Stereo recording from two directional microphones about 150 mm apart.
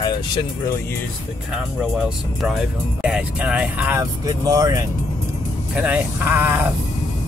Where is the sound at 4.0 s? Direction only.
25° right (ahead or behind).